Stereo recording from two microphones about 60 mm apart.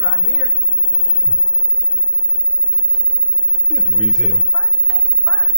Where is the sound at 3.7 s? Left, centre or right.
Centre.